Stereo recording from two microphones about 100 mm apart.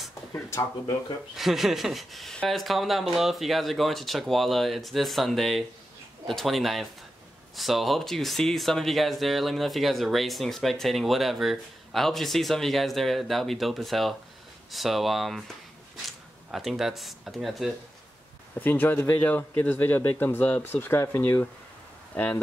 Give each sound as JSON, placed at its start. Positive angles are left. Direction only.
{"t": 1.3, "sound": "speech", "side_deg": 0}
{"t": 18.6, "sound": "a man's voice", "side_deg": 20}